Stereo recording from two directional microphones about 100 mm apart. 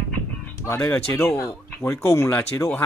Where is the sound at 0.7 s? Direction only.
25° left (ahead or behind).